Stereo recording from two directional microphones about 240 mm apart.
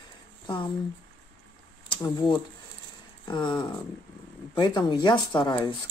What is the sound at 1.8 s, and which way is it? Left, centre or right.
Speech, centre.